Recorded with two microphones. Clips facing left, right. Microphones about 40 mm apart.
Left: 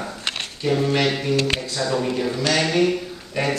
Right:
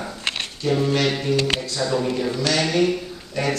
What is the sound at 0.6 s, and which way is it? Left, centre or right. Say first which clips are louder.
Speech: even; centre.